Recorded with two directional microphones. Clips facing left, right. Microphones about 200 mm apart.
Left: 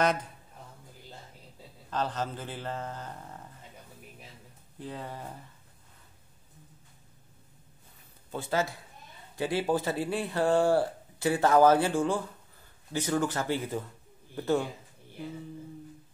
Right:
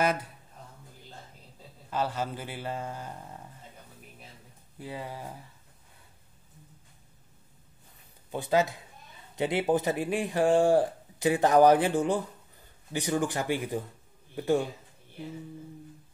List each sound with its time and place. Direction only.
1.9 s speech: 10° right (ahead or behind)
4.7 s speech: 10° right (ahead or behind)
8.3 s a man's voice: 15° right (ahead or behind)